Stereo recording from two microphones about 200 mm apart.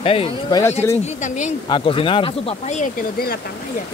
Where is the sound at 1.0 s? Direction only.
35° left (ahead or behind).